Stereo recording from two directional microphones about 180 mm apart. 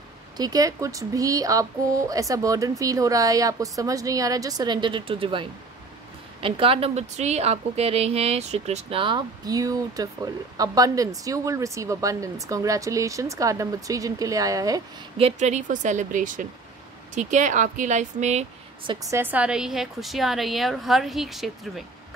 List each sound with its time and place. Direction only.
0.4 s a woman's voice: 20° right (ahead or behind)
15.1 s speech: 35° right (ahead or behind)
19.0 s a woman's voice: 10° right (ahead or behind)